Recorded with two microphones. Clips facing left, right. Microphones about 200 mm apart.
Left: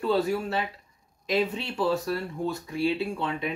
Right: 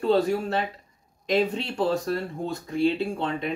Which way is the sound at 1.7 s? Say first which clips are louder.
Right 1 dB; 40° right (ahead or behind).